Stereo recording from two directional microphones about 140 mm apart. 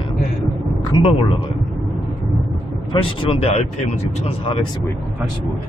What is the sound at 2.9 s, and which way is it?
Speech, 40° left (ahead or behind).